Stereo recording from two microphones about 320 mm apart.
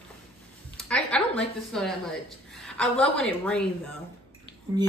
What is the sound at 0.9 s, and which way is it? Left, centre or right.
A woman's voice, centre.